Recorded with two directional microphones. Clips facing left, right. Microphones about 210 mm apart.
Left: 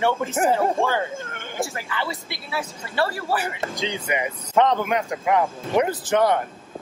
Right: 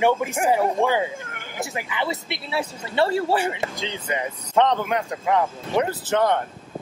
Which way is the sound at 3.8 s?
15° left (ahead or behind).